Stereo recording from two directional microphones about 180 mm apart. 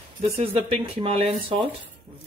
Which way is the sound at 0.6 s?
30° right (ahead or behind).